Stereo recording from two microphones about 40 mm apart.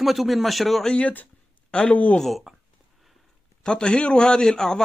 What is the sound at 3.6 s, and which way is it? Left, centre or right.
A man's voice, centre.